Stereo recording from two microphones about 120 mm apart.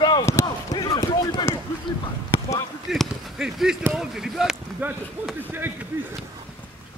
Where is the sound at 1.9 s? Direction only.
40° left (ahead or behind).